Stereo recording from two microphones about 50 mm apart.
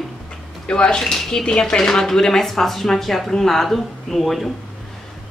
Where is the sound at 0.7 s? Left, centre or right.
Centre.